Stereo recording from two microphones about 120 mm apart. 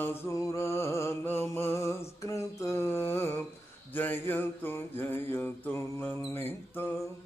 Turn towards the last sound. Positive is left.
turn(degrees=15)  # may be behind; listen again after turning